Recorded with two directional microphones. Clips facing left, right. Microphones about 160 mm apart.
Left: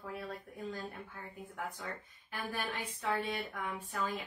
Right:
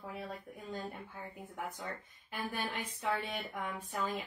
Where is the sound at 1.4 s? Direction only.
20° right (ahead or behind).